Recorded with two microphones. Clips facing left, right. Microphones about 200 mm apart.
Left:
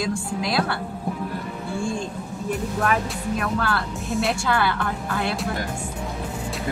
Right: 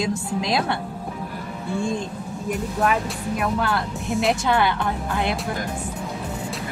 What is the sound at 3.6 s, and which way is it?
A woman's voice, 20° right (ahead or behind).